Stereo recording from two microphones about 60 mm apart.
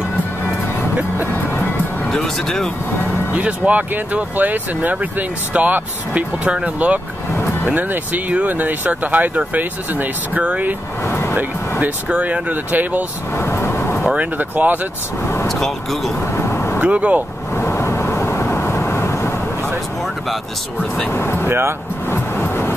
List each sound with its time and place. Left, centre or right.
2.0 s speech: centre
3.3 s speech: right
11.1 s vehicle: left
12.2 s speech: right
13.4 s vehicle: left
14.4 s speech: right
15.4 s speech: centre
16.3 s vehicle: left
16.8 s speech: right
17.6 s vehicle: left
21.1 s speech: left
21.5 s speech: right
22.1 s vehicle: left